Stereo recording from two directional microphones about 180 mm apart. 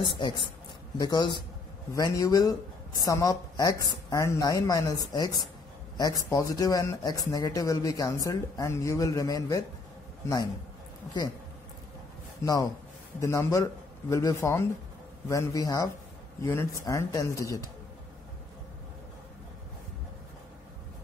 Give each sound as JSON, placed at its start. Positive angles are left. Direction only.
{"t": 0.0, "sound": "speech", "side_deg": 25}
{"t": 13.2, "sound": "speech", "side_deg": 15}